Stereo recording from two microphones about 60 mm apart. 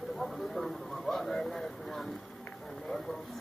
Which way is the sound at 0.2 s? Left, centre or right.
Centre.